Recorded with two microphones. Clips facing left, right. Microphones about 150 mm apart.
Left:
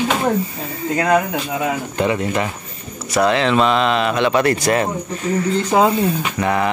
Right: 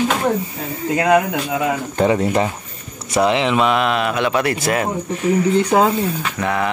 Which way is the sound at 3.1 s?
20° right (ahead or behind).